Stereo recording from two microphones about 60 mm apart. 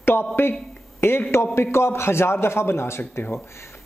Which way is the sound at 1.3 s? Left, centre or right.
Left.